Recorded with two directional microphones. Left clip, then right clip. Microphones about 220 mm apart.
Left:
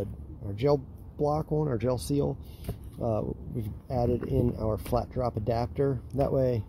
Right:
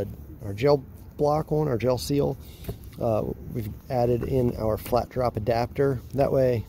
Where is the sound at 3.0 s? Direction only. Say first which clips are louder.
Right 5 dB; 30° right (ahead or behind).